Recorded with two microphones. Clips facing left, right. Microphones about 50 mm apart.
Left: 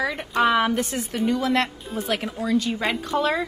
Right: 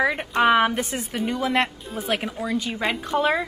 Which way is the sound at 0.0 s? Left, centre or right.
Right.